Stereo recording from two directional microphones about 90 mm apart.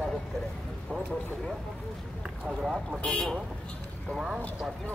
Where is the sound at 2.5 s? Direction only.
5° right (ahead or behind).